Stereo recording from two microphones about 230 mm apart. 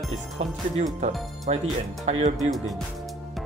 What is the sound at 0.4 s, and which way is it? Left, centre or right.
Speech, right.